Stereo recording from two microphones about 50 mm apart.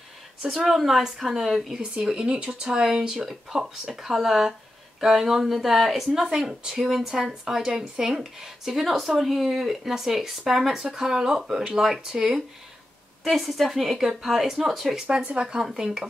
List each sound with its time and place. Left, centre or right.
0.5 s a woman's voice: centre
1.8 s a woman's voice: centre
15.0 s speech: centre